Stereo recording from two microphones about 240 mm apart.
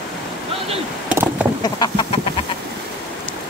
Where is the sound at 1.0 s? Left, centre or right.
Centre.